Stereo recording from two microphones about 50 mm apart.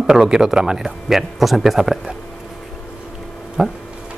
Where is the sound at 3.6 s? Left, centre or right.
Centre.